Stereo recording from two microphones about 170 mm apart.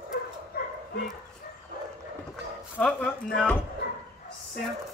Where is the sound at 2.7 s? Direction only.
5° left (ahead or behind).